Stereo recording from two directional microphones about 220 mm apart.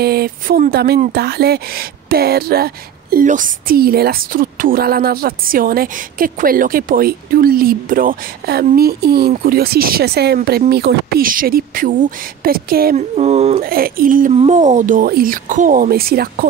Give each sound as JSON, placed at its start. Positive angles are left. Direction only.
{"t": 0.0, "sound": "speech", "side_deg": -45}
{"t": 13.1, "sound": "speech", "side_deg": -30}
{"t": 13.7, "sound": "speech", "side_deg": -40}